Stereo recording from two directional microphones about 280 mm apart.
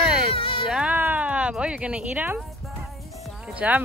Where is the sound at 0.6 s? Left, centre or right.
Centre.